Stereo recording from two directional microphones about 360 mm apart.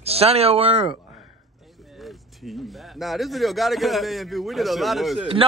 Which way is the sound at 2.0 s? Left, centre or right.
Centre.